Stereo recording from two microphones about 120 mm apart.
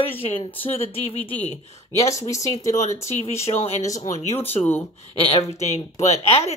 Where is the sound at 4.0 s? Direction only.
75° left (ahead or behind).